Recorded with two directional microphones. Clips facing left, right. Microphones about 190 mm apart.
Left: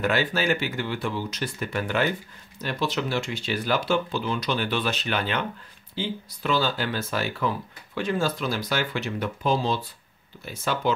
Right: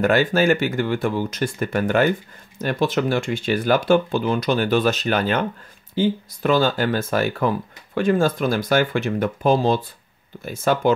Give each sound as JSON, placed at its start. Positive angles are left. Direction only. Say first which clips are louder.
{"t": 0.0, "sound": "speech", "louder": "right 7 dB", "side_deg": -45}